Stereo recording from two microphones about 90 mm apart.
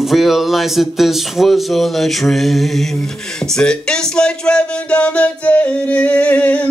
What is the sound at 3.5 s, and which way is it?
Music, 10° left (ahead or behind).